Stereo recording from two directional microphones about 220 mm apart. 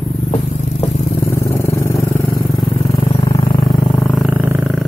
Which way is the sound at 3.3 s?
25° left (ahead or behind).